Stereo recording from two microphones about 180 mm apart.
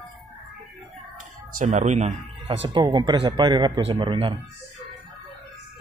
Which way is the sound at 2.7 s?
25° right (ahead or behind).